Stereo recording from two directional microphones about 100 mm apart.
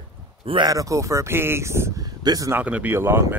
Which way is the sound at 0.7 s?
35° right (ahead or behind).